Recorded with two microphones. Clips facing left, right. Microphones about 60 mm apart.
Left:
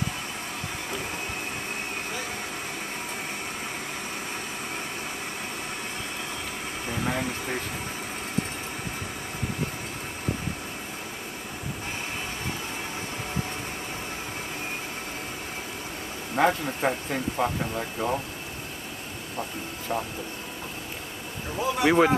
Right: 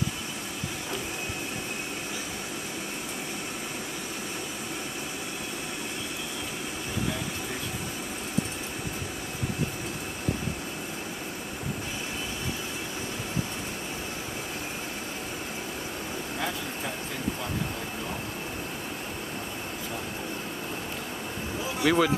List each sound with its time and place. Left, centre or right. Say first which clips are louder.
16.3 s speech: left 13 dB; left
21.8 s speech: left 3 dB; left